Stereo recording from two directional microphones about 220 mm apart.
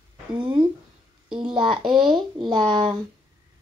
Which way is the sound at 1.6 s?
Centre (ahead or behind).